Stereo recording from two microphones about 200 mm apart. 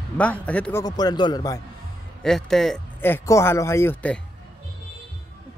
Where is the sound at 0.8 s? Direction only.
20° left (ahead or behind).